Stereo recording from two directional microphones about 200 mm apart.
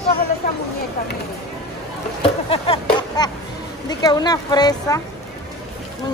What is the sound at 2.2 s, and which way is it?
Speech, 25° left (ahead or behind).